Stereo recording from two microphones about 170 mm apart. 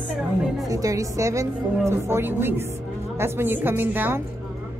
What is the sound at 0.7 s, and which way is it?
A woman's voice, 20° right (ahead or behind).